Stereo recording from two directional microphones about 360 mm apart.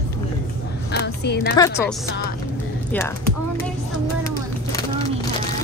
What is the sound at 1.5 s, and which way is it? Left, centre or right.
Speech, centre.